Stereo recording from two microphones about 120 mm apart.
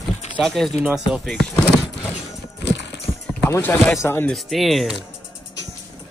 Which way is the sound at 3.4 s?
20° left (ahead or behind).